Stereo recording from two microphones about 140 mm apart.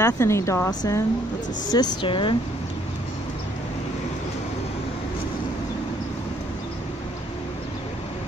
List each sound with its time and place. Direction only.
0.0 s speech: 20° left (ahead or behind); by 2.3 s 35° left (ahead or behind)